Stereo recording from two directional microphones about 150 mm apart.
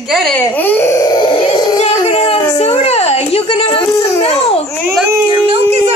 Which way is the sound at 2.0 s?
40° left (ahead or behind).